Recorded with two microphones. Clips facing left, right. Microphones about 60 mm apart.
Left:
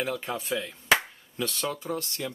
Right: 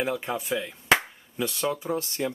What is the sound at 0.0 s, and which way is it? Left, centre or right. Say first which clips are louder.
Speech: right 3 dB; centre.